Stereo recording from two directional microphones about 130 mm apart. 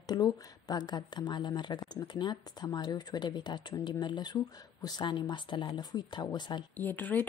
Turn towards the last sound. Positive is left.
turn(degrees=15)  # may be behind; listen again after turning